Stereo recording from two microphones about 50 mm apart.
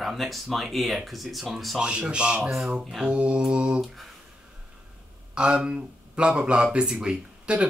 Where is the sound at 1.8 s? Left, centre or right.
Right.